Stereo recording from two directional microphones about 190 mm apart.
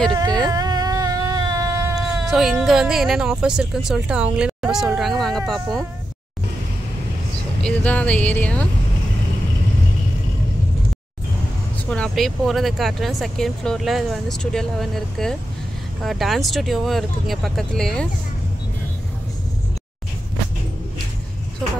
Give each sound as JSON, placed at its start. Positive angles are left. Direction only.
{"t": 0.5, "sound": "whimper", "side_deg": -20}
{"t": 2.0, "sound": "speech", "side_deg": 0}
{"t": 7.6, "sound": "speech", "side_deg": 5}
{"t": 11.9, "sound": "speech", "side_deg": 5}